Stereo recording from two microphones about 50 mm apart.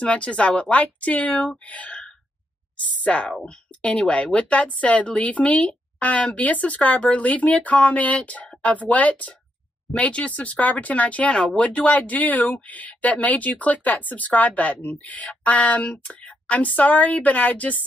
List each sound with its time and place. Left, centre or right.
0.0 s a woman's voice: left
1.7 s sigh: left
3.0 s a woman's voice: left